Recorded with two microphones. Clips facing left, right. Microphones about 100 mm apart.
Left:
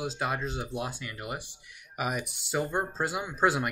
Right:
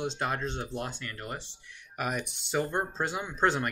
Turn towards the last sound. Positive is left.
turn(degrees=5)  # may be behind; listen again after turning